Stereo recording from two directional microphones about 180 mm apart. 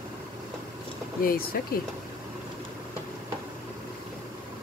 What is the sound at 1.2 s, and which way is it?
Speech, 55° left (ahead or behind).